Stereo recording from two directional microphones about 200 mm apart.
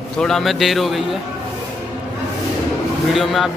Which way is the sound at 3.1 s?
Centre (ahead or behind).